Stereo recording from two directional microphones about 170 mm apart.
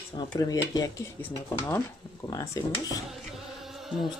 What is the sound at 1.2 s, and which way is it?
Speech, 10° left (ahead or behind).